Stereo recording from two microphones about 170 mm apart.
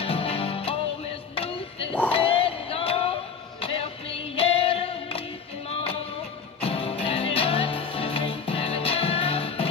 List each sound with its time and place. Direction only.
0.0 s music: 35° left (ahead or behind)